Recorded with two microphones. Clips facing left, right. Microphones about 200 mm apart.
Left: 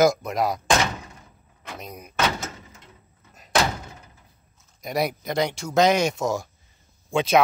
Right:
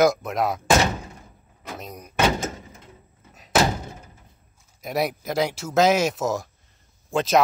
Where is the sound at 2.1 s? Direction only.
15° right (ahead or behind).